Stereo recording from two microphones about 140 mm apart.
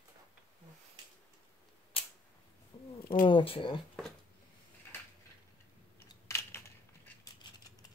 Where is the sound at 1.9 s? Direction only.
40° left (ahead or behind).